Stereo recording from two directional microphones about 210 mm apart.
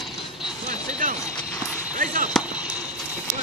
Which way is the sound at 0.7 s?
40° right (ahead or behind).